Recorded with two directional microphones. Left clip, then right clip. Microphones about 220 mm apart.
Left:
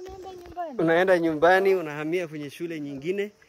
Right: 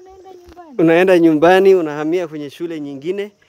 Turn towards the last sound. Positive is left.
turn(degrees=-15)  # may be behind; listen again after turning